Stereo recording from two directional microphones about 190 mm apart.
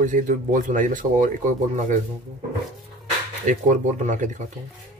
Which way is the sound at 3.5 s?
40° right (ahead or behind).